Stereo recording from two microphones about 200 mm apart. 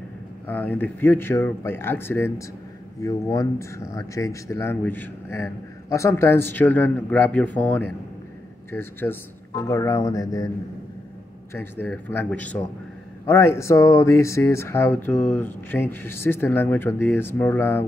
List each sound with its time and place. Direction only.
0.5 s speech: 10° left (ahead or behind)
11.5 s speech: 10° left (ahead or behind)